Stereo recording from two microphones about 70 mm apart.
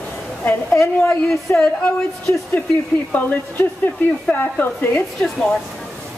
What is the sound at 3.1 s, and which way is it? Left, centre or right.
Speech, left.